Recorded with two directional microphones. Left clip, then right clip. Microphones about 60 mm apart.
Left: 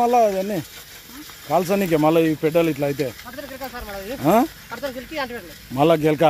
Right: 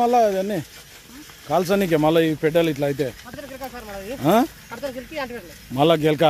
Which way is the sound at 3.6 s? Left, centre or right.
Left.